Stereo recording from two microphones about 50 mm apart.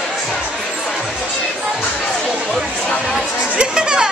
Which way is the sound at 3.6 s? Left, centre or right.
Centre.